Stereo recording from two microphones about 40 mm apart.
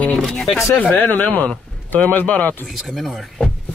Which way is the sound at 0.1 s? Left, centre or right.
Centre.